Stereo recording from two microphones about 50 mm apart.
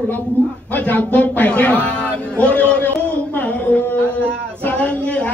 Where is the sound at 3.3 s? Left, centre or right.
Left.